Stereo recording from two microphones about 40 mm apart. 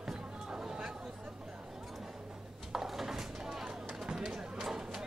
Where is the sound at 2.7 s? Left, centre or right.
Centre.